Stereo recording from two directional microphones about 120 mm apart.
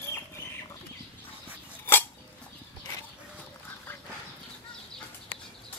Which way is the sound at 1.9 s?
20° left (ahead or behind).